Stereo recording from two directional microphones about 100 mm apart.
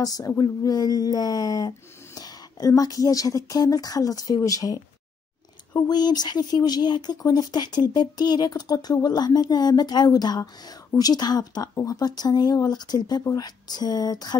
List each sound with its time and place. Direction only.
0.0 s speech: 40° left (ahead or behind)